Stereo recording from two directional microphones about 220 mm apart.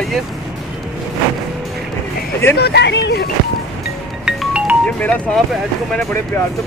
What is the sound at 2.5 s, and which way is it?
Speech, 50° left (ahead or behind).